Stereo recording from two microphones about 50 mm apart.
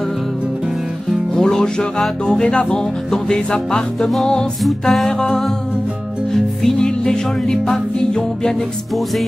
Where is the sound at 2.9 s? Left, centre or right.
Centre.